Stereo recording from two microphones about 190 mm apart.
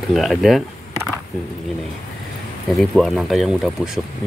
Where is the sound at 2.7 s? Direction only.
Centre (ahead or behind).